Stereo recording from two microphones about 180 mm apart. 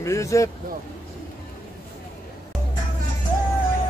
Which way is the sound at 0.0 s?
15° left (ahead or behind).